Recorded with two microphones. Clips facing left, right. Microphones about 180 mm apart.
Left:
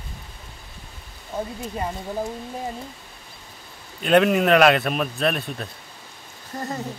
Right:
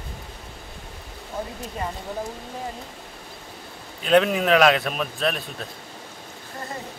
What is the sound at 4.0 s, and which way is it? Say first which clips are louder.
A man's voice: left 1 dB; centre (ahead or behind).